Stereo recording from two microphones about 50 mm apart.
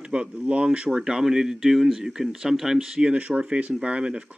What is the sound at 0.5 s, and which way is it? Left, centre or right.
Speech, right.